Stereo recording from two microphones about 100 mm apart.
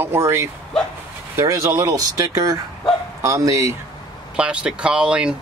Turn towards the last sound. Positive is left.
turn(degrees=-10)  # may be behind; listen again after turning